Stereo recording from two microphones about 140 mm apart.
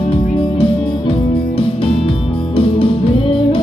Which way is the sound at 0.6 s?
40° left (ahead or behind).